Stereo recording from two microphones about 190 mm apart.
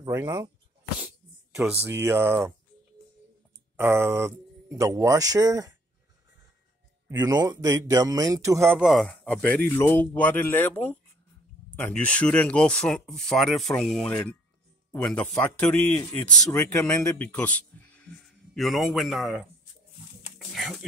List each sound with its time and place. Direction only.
0.0 s speech: 15° right (ahead or behind)
3.7 s speech: 15° right (ahead or behind)
7.1 s speech: 20° right (ahead or behind)
8.6 s speech: centre (ahead or behind)